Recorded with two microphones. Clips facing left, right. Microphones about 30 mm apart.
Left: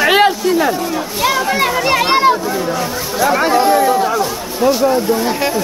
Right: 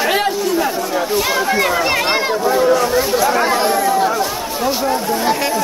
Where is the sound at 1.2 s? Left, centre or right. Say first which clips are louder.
Left 4 dB; centre.